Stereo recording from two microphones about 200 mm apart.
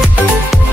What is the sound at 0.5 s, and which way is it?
Music, centre (ahead or behind).